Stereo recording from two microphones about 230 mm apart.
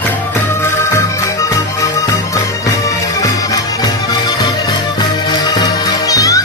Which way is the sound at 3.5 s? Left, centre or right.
Centre.